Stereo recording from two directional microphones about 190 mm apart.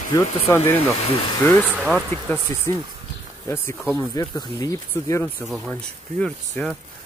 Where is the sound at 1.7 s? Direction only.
5° right (ahead or behind).